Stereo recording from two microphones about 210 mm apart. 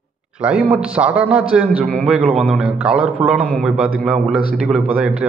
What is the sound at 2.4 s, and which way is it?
Speech, 5° right (ahead or behind).